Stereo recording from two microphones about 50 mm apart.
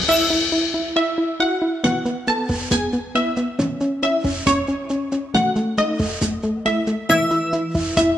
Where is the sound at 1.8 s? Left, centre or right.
Centre.